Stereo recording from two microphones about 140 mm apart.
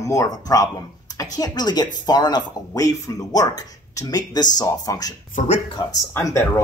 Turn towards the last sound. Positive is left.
turn(degrees=20)  # may be behind; listen again after turning